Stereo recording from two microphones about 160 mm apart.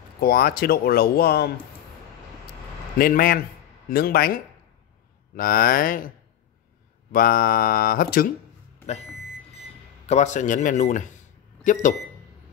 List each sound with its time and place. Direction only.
0.2 s speech: 70° left (ahead or behind)
3.0 s speech: 65° left (ahead or behind)
8.8 s speech: 45° left (ahead or behind)